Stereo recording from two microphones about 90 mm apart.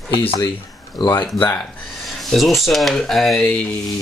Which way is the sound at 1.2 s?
25° left (ahead or behind).